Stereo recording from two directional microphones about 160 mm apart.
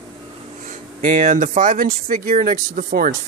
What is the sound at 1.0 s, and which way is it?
Speech, 55° right (ahead or behind).